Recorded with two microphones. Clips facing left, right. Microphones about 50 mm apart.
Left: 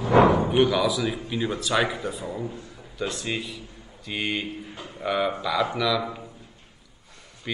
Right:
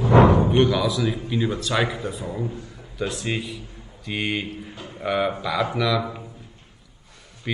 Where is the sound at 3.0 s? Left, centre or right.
Centre.